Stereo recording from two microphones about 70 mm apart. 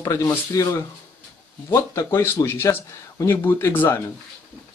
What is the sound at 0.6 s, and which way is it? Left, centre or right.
Speech, left.